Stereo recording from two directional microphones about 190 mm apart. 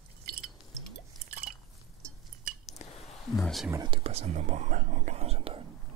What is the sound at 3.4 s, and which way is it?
Speech, centre (ahead or behind).